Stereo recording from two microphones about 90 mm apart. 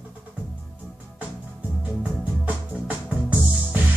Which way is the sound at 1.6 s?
15° right (ahead or behind).